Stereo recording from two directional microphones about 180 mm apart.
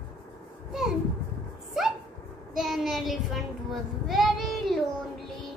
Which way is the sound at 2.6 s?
Centre (ahead or behind).